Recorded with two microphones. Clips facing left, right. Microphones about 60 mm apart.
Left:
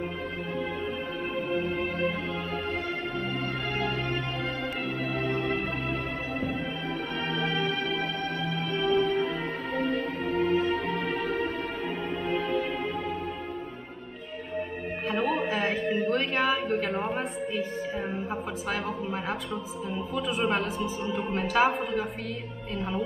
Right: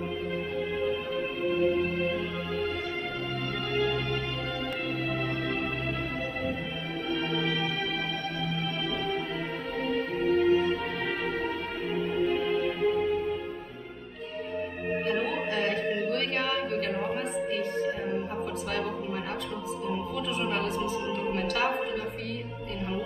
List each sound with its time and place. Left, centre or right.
10.3 s music: left
15.0 s a sound: centre
20.4 s music: centre